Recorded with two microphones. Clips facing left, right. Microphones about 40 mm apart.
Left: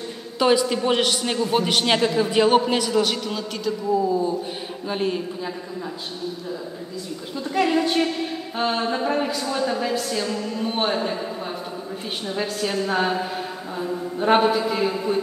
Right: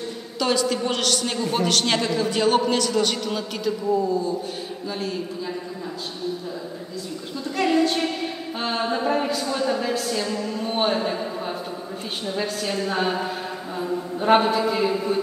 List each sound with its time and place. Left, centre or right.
0.4 s a man's voice: centre
4.8 s a man's voice: left
7.5 s a man's voice: centre
12.3 s a man's voice: centre